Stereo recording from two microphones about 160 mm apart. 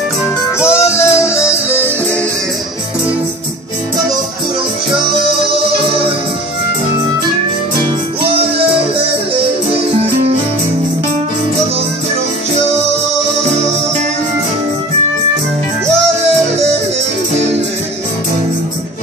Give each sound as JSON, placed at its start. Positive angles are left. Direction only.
{"t": 0.6, "sound": "music", "side_deg": 15}
{"t": 8.2, "sound": "music", "side_deg": -35}